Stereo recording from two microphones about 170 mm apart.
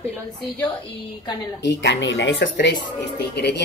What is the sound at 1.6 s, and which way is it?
Speech, 90° left.